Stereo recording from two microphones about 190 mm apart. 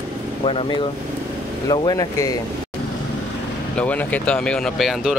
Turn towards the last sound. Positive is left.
turn(degrees=0)  # may be behind; listen again after turning